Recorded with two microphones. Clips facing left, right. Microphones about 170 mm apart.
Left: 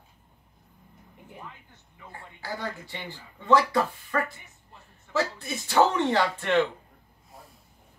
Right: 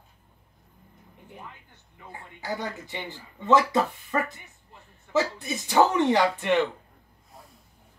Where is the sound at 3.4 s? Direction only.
20° right (ahead or behind).